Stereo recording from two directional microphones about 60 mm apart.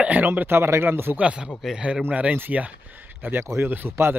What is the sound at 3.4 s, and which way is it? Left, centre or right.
Speech, right.